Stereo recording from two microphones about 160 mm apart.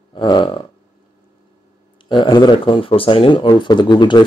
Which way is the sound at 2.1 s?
30° left (ahead or behind).